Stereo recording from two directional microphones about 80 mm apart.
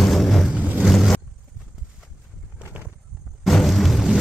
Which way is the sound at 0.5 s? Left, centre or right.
Centre.